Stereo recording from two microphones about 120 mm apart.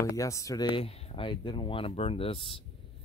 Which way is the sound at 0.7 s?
55° left (ahead or behind).